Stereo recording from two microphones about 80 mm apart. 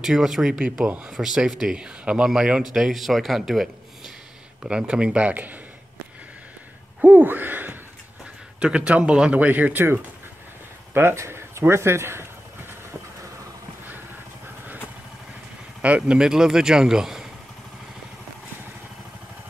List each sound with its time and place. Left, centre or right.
0.0 s speech: centre; by 5.6 s right
7.0 s a sound: right
8.5 s speech: centre
10.9 s speech: right
16.1 s speech: centre